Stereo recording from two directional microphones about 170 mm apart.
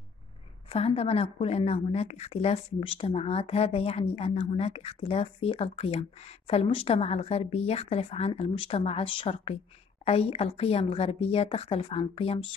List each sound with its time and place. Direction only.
0.7 s speech: 35° left (ahead or behind)